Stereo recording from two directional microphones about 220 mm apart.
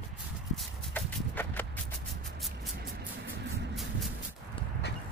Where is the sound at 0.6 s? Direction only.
10° left (ahead or behind).